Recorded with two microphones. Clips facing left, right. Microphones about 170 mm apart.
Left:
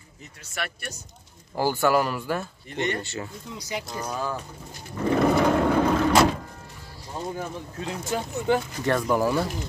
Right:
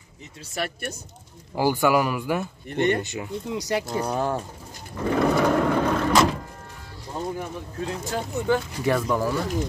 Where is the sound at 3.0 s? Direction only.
15° right (ahead or behind).